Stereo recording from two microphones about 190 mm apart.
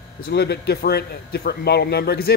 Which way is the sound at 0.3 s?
60° left (ahead or behind).